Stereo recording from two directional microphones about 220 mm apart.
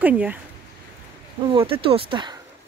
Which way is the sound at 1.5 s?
25° right (ahead or behind).